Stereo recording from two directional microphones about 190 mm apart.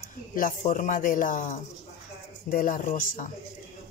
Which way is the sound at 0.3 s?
45° left (ahead or behind).